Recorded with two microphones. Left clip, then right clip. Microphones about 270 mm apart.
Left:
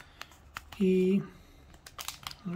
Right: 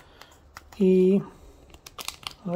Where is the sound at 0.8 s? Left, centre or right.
Centre.